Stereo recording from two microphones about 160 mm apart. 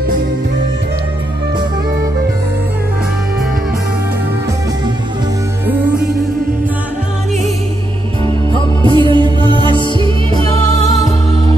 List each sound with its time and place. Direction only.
8.5 s music: 30° right (ahead or behind)